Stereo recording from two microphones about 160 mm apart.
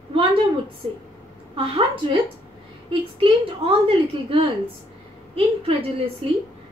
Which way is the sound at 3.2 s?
35° right (ahead or behind).